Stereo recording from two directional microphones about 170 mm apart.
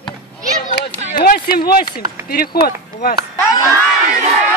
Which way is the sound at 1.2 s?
60° left (ahead or behind).